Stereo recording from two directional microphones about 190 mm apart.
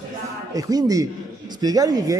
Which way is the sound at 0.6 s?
20° right (ahead or behind).